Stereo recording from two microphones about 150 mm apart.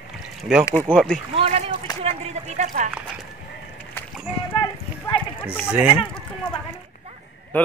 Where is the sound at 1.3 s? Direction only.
45° right (ahead or behind).